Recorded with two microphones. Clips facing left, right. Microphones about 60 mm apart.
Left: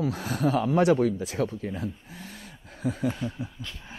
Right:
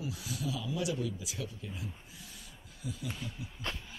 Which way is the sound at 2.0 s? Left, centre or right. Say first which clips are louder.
Left 9 dB; left.